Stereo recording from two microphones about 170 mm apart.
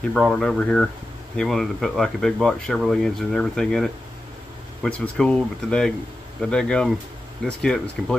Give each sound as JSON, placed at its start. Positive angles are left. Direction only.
{"t": 0.1, "sound": "speech", "side_deg": 5}